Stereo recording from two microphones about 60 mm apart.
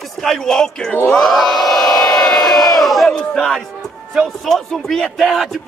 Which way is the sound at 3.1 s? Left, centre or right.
Centre.